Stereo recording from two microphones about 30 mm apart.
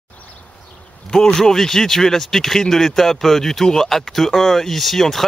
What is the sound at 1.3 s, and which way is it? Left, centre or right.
Speech, centre.